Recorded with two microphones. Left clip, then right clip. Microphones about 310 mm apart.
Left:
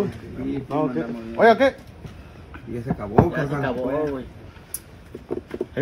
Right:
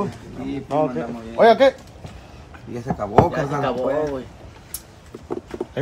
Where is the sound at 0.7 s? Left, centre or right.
Right.